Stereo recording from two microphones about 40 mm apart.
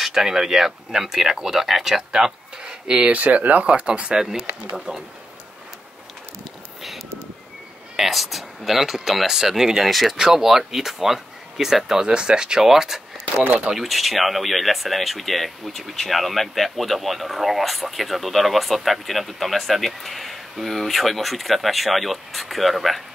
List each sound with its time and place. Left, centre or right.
0.0 s speech: centre
3.1 s speech: right
3.6 s speech: right
4.2 s speech: centre
7.9 s speech: centre
9.8 s speech: centre
10.1 s speech: centre
10.4 s speech: centre
12.1 s speech: right
13.4 s speech: right
13.7 s speech: centre